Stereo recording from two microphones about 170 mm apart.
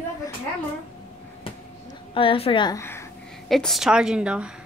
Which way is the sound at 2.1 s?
35° left (ahead or behind).